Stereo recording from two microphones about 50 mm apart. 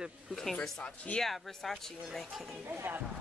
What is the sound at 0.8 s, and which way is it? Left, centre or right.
Speech, left.